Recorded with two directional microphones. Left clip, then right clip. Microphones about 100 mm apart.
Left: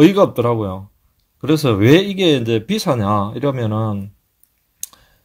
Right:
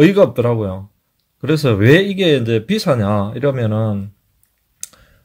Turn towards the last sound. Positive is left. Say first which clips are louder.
# right 2 dB
turn(degrees=20)  # may be behind; listen again after turning